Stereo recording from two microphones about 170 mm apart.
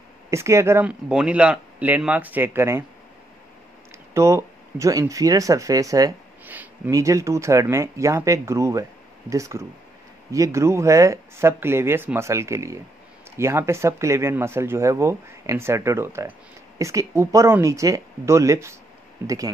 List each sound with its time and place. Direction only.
0.3 s speech: 15° right (ahead or behind)
4.1 s speech: 15° right (ahead or behind)
6.4 s speech: 10° right (ahead or behind)